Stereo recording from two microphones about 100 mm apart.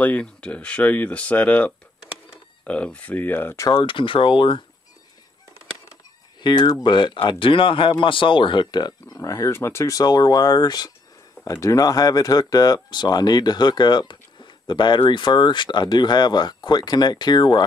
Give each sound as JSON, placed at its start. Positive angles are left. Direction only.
{"t": 0.0, "sound": "speech", "side_deg": 15}
{"t": 3.7, "sound": "speech", "side_deg": 60}
{"t": 6.4, "sound": "speech", "side_deg": 50}